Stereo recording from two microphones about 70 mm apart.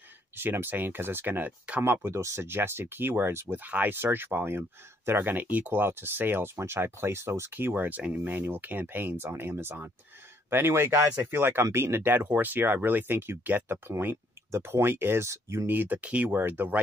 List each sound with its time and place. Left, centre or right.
0.4 s speech: right
3.6 s speech: right
15.6 s speech: right
16.3 s speech: right